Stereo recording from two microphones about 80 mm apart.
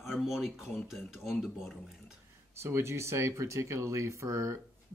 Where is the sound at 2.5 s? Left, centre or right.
Right.